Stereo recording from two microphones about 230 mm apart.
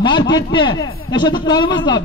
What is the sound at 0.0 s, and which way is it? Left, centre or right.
A man's voice, centre.